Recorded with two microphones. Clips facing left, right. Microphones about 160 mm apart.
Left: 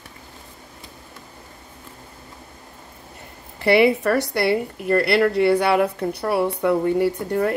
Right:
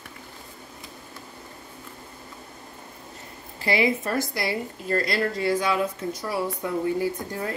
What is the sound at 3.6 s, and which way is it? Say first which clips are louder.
A woman's voice: left 8 dB; 70° left (ahead or behind).